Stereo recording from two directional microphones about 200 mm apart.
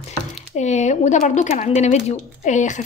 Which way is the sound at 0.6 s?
35° left (ahead or behind).